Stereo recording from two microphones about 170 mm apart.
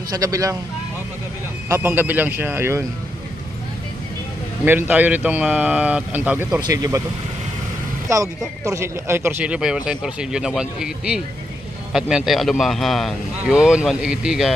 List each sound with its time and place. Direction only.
0.1 s speech: 20° right (ahead or behind)
1.7 s speech: 10° right (ahead or behind)
4.6 s speech: 10° right (ahead or behind)
6.6 s speech: 20° right (ahead or behind)
8.1 s a man's voice: 20° right (ahead or behind); by 14.5 s 5° right (ahead or behind)